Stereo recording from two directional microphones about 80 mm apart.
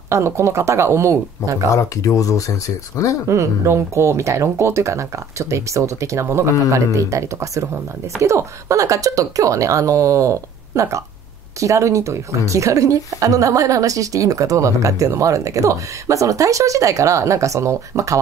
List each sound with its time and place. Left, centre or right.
0.1 s speech: right
1.7 s speech: left
3.3 s a woman's voice: right